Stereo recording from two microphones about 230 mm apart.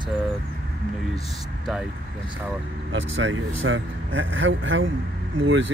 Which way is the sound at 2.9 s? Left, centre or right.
Right.